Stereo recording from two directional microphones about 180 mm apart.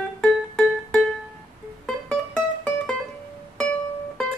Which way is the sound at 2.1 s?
5° left (ahead or behind).